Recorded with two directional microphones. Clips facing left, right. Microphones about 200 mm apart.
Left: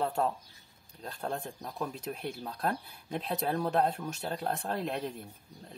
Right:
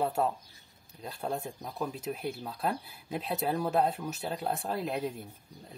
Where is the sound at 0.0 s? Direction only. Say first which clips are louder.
Right 1 dB; 5° right (ahead or behind).